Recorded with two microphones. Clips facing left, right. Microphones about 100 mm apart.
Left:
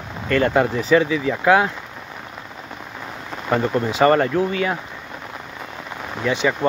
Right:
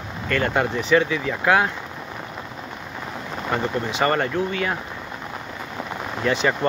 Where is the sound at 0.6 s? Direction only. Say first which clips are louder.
Left 1 dB; 35° left (ahead or behind).